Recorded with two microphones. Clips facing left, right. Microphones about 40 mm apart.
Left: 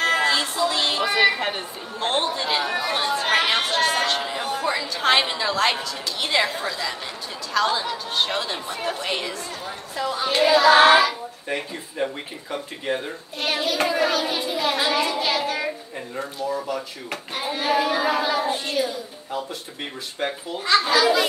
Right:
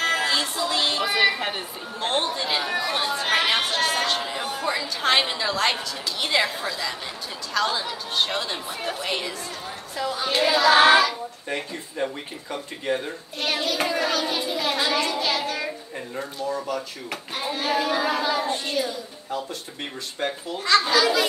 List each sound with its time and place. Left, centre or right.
0.0 s music: centre
6.2 s a woman's voice: centre
16.5 s a child's voice: centre
17.1 s a child's voice: centre